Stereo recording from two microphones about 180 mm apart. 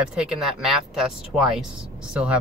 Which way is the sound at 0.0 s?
5° right (ahead or behind).